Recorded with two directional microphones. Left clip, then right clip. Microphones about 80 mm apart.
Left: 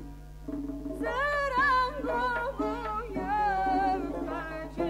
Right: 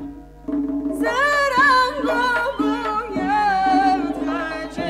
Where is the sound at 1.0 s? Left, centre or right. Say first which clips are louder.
Right 11 dB; centre.